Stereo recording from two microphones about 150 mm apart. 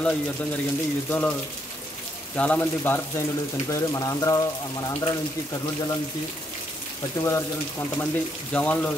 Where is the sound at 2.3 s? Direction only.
10° left (ahead or behind).